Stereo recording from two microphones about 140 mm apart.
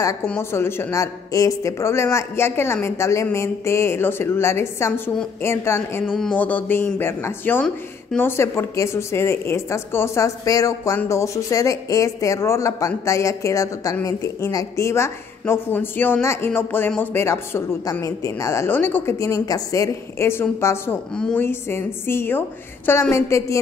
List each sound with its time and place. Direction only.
0.3 s a woman's voice: 15° left (ahead or behind)